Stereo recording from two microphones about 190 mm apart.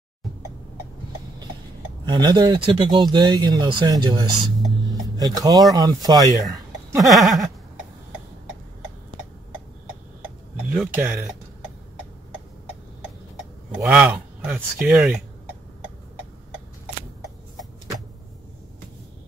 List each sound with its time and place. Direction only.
2.0 s speech: 20° right (ahead or behind)
7.0 s a sound: centre (ahead or behind)
10.7 s speech: 5° right (ahead or behind)
13.7 s speech: 10° right (ahead or behind)